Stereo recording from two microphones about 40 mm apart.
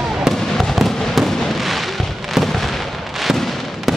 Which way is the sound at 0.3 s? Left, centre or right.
Centre.